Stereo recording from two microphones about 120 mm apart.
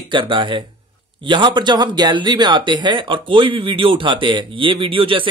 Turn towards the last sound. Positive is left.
turn(degrees=-45)  # may be behind; listen again after turning